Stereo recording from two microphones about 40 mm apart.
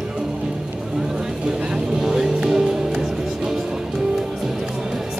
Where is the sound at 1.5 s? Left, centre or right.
Right.